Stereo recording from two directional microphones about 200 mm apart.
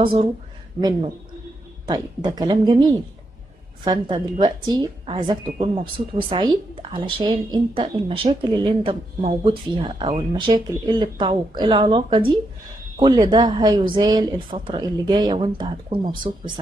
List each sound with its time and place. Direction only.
0.0 s speech: 25° right (ahead or behind)